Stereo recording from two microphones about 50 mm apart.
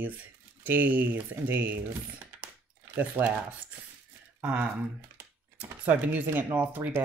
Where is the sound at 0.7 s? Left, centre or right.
Right.